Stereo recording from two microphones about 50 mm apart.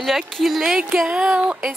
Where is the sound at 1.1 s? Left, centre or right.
Centre.